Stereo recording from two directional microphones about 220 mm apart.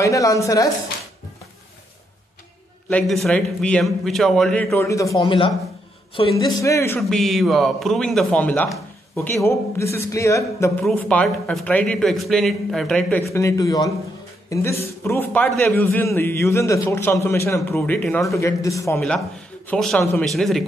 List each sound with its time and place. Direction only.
0.0 s a man's voice: 15° left (ahead or behind)
2.9 s a man's voice: 5° left (ahead or behind)
7.0 s a man's voice: centre (ahead or behind)
13.3 s a man's voice: 15° left (ahead or behind)
18.9 s a man's voice: 5° left (ahead or behind)